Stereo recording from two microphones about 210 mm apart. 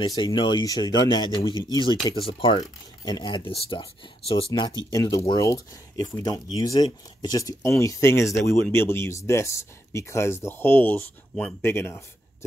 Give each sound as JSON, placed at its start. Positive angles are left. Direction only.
{"t": 0.0, "sound": "speech", "side_deg": 20}